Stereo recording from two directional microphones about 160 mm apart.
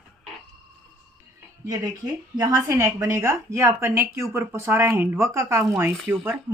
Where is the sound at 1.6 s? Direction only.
20° right (ahead or behind).